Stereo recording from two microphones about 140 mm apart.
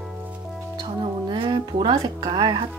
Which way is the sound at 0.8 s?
30° right (ahead or behind).